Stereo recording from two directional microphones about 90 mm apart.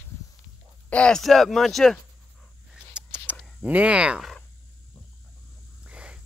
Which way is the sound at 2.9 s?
15° right (ahead or behind).